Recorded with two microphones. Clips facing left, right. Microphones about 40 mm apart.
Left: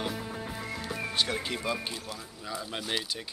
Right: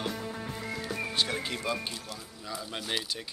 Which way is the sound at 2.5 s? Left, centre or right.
Centre.